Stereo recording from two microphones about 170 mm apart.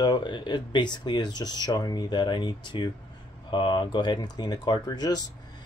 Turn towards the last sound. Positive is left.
turn(degrees=25)  # may be behind; listen again after turning